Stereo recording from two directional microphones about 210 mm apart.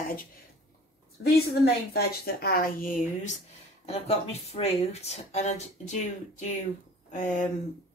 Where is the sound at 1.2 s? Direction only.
50° left (ahead or behind).